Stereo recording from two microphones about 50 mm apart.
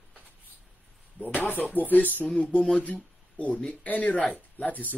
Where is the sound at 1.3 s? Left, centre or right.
Left.